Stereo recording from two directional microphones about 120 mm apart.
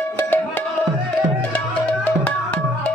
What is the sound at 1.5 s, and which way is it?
Music, 15° left (ahead or behind).